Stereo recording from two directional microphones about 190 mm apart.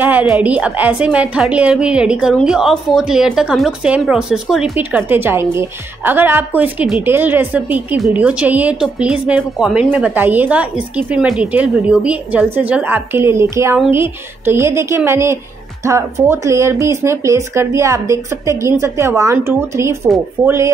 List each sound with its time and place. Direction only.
0.0 s a woman's voice: 10° right (ahead or behind)